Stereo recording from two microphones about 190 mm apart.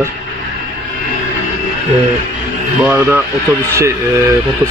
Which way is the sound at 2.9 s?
10° right (ahead or behind).